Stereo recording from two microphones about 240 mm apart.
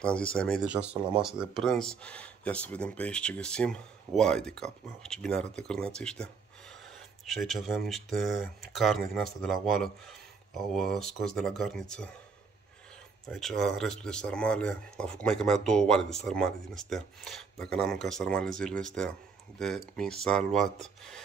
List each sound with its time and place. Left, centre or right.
0.0 s speech: centre
13.3 s speech: centre